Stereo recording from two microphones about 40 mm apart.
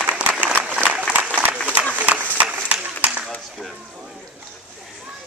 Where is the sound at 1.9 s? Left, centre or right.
Right.